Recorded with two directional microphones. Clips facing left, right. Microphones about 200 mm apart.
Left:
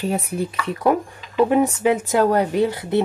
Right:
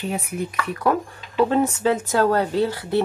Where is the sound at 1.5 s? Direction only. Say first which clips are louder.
Left 2 dB; 15° left (ahead or behind).